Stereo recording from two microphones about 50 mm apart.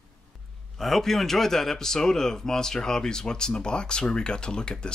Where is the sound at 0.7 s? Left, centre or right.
Centre.